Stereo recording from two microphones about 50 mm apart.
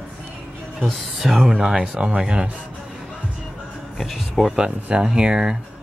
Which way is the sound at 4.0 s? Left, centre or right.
Centre.